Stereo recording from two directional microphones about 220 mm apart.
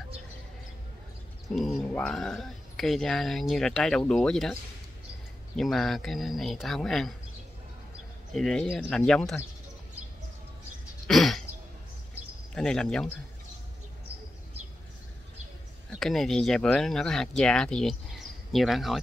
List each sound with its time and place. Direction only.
1.5 s speech: centre (ahead or behind)
5.6 s speech: centre (ahead or behind)
8.3 s speech: centre (ahead or behind)
11.1 s a sound: centre (ahead or behind)
12.5 s speech: 5° left (ahead or behind)
15.9 s speech: centre (ahead or behind)